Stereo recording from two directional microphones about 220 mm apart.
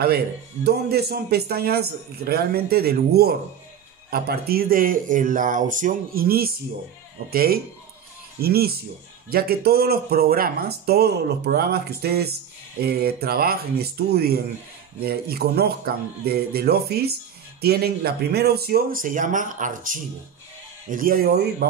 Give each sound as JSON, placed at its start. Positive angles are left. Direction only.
{"t": 0.7, "sound": "speech", "side_deg": -45}